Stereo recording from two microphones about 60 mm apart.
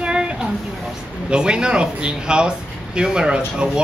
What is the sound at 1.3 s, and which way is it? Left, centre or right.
Speech, centre.